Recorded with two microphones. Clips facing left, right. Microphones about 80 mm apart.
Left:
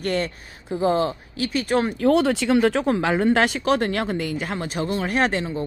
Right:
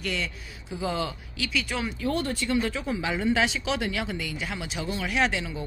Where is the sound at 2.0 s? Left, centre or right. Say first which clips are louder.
Left 9 dB; left.